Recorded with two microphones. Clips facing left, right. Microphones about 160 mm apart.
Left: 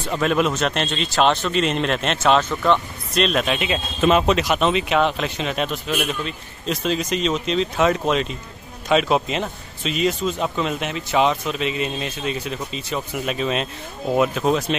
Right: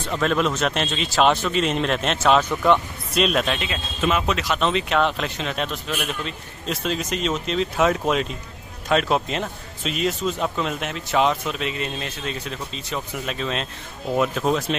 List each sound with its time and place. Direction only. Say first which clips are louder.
0.1 s speech: left 2 dB; 5° left (ahead or behind)
3.4 s a man's voice: left 4 dB; 15° left (ahead or behind)
4.0 s speech: left 5 dB; 30° left (ahead or behind)
4.4 s speech: left 3 dB; 15° left (ahead or behind)